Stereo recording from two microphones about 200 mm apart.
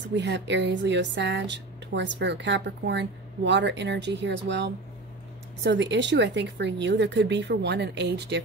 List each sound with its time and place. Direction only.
0.1 s speech: 60° right (ahead or behind)